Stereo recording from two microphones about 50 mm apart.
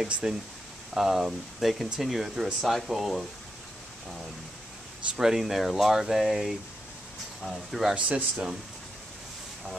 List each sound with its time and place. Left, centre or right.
0.0 s speech: centre
5.1 s speech: centre
7.9 s speech: right